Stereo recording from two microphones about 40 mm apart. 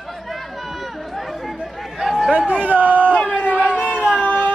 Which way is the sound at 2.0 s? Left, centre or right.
Centre.